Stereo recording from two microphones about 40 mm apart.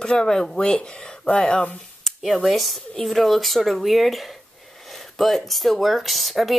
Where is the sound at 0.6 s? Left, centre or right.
Left.